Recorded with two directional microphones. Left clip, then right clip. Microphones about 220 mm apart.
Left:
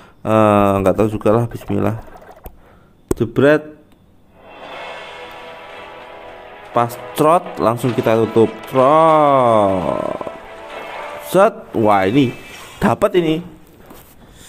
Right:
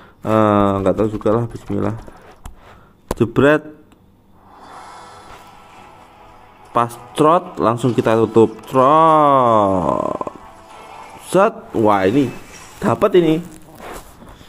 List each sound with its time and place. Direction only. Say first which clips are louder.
0.2 s speech: left 2 dB; 10° left (ahead or behind)
3.2 s a man's voice: even; 5° right (ahead or behind)
6.7 s speech: left 1 dB; 5° right (ahead or behind)
7.2 s a man's voice: even; 5° left (ahead or behind)
10.1 s music: even; 5° left (ahead or behind)
12.0 s speech: left 1 dB; 25° left (ahead or behind)